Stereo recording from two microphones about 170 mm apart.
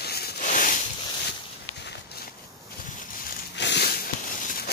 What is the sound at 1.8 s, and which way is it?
Walk, 85° left.